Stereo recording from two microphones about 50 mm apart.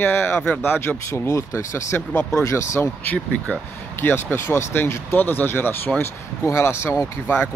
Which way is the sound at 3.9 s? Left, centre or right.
Left.